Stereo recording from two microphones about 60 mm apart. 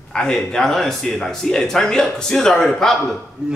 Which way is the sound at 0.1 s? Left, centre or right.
Centre.